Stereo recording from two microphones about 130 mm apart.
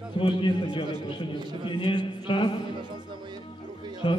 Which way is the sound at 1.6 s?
40° left (ahead or behind).